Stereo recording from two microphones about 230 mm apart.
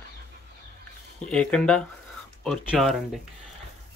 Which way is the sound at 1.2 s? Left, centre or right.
Centre.